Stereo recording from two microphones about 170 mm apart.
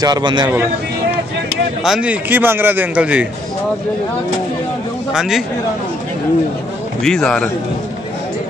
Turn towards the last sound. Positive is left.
turn(degrees=5)  # may be behind; listen again after turning